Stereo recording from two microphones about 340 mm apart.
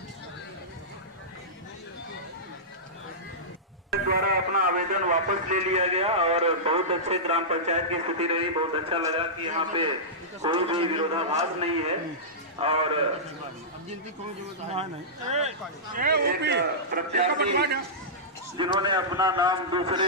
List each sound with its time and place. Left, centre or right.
3.9 s speech: right
14.7 s a man's voice: centre
18.6 s speech: centre